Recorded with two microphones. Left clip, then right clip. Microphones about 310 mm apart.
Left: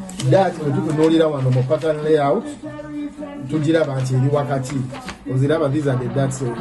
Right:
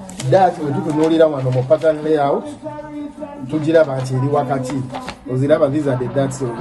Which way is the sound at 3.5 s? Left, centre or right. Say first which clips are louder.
Right 4 dB; centre.